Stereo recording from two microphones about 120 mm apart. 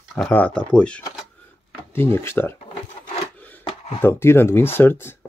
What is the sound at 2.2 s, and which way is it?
Speech, 20° left (ahead or behind).